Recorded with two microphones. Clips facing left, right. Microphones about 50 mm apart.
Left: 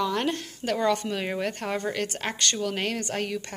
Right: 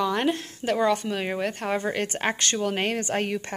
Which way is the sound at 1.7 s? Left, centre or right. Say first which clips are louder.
Right 2 dB; centre.